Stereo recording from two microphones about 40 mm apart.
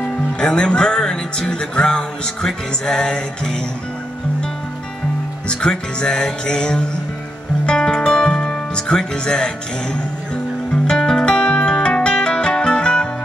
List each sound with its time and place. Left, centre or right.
0.4 s music: centre
5.5 s music: left
10.7 s music: centre